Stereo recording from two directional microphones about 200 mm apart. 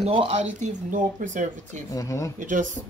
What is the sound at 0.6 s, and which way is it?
Speech, 40° right (ahead or behind).